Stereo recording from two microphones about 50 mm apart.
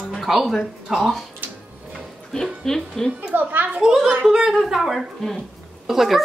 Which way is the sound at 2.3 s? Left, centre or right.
Centre.